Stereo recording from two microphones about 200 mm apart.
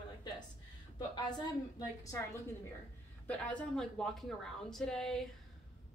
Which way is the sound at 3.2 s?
5° left (ahead or behind).